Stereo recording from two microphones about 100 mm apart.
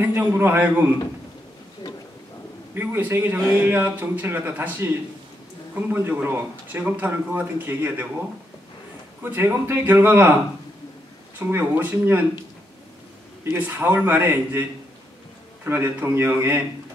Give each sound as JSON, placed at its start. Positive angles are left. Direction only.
{"t": 0.0, "sound": "speech", "side_deg": -20}
{"t": 2.7, "sound": "speech", "side_deg": -20}
{"t": 9.2, "sound": "speech", "side_deg": -20}
{"t": 11.3, "sound": "speech", "side_deg": -20}
{"t": 13.4, "sound": "speech", "side_deg": -20}
{"t": 15.6, "sound": "speech", "side_deg": -20}